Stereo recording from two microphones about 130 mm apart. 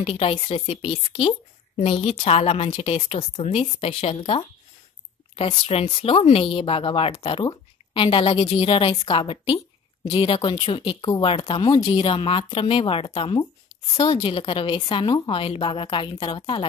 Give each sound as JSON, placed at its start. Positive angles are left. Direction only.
{"t": 0.0, "sound": "a woman's voice", "side_deg": 50}